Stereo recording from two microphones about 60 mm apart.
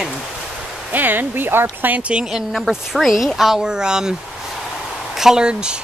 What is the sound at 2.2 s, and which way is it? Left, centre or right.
Speech, centre.